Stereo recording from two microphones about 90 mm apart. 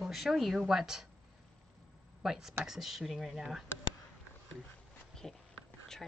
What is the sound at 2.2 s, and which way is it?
Speech, 5° right (ahead or behind).